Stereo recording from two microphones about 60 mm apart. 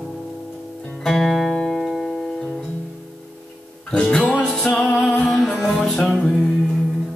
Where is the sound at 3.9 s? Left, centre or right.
Centre.